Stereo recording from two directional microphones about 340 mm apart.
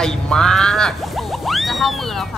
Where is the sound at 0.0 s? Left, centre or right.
Centre.